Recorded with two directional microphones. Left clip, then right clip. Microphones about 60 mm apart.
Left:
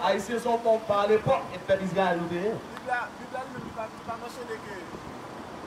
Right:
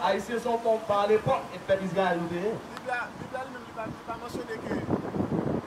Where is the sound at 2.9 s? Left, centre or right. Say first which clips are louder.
Left 2 dB; right.